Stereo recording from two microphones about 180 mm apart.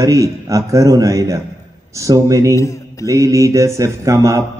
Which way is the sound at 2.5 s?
15° left (ahead or behind).